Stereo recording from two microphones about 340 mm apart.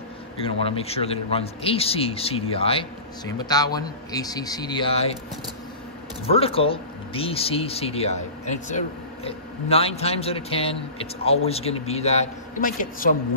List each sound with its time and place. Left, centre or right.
0.4 s speech: centre
6.3 s speech: centre